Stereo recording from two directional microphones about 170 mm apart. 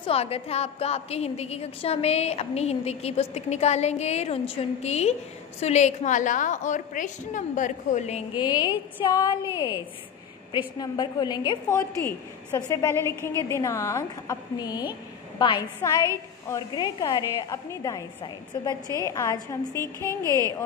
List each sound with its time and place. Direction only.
0.0 s a woman's voice: 35° left (ahead or behind)
8.4 s a woman's voice: 25° left (ahead or behind)
10.8 s a woman's voice: 25° left (ahead or behind)